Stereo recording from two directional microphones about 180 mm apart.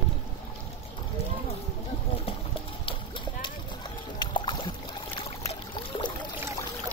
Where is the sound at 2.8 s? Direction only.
25° left (ahead or behind).